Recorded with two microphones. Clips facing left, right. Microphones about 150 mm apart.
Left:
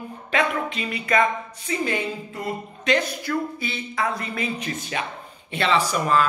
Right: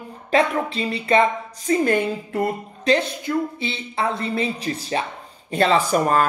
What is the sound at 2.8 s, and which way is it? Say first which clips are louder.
Speech: right 3 dB; 25° right (ahead or behind).